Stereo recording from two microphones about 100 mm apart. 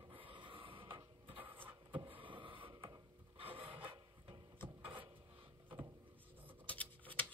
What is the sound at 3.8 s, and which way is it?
Drawer open or close, 60° right (ahead or behind).